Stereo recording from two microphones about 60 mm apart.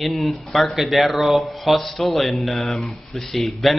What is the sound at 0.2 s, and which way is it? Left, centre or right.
Speech, centre.